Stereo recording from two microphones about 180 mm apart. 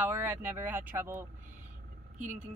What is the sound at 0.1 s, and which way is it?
Speech, 10° right (ahead or behind).